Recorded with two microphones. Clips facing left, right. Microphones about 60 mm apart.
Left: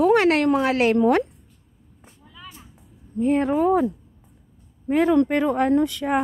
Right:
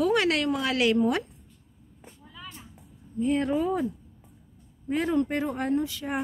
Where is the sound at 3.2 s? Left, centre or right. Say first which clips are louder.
Left 5 dB; left.